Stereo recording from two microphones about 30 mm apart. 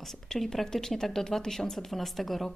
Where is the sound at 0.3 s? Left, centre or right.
Centre.